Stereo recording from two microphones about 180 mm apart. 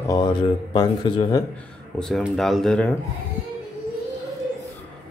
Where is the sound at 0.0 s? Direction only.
25° left (ahead or behind).